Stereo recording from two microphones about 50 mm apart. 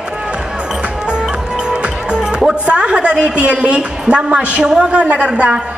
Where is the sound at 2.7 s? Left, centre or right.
Centre.